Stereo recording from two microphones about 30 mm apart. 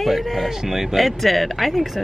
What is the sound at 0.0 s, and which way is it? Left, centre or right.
Speech, centre.